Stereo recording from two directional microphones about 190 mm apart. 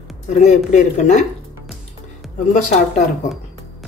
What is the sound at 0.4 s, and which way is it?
Speech, 40° left (ahead or behind).